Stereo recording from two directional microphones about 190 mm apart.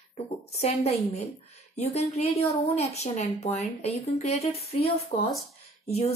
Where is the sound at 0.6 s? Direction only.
35° left (ahead or behind).